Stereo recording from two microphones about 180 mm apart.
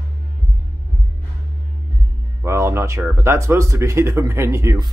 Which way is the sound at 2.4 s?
15° right (ahead or behind).